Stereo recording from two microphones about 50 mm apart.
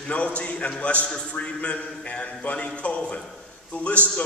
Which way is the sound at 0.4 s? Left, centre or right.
Left.